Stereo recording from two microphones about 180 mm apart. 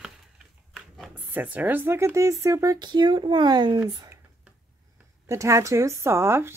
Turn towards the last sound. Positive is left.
turn(degrees=-15)  # may be behind; listen again after turning